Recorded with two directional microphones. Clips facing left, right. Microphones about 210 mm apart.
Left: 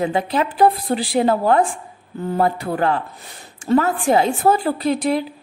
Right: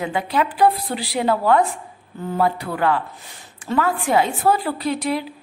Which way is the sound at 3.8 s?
30° left (ahead or behind).